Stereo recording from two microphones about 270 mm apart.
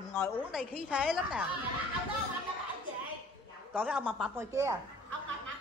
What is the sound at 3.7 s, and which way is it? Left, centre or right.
A woman's voice, centre.